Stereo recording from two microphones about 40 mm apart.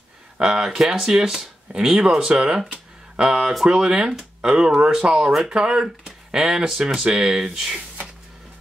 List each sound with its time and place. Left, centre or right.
0.4 s speech: centre